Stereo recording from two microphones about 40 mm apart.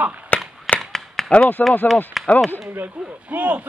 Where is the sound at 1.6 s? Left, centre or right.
Left.